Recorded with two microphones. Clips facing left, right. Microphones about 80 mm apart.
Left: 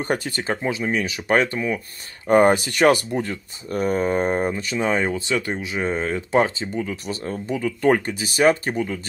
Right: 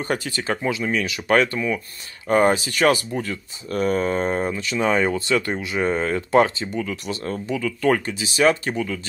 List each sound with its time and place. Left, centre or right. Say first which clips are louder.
0.0 s speech: left 1 dB; left
0.5 s speech: even; left
2.3 s speech: left 2 dB; left
3.7 s speech: even; centre
6.3 s speech: right 2 dB; centre
8.0 s speech: left 1 dB; left
8.7 s speech: left 1 dB; left